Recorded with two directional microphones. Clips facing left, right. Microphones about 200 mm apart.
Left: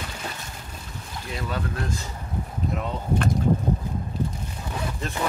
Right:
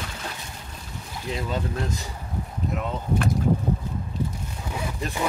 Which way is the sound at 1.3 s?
20° right (ahead or behind).